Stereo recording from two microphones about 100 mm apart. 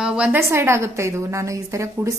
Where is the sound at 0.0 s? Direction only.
10° right (ahead or behind).